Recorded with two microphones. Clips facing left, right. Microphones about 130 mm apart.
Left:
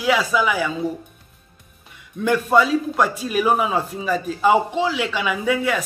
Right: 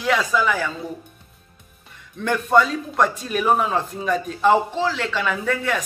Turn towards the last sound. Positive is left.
turn(degrees=5)  # may be behind; listen again after turning